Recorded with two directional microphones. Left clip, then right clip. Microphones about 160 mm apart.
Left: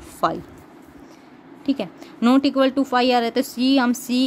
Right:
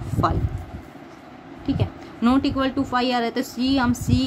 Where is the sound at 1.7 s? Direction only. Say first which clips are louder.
Left 3 dB; 65° left (ahead or behind).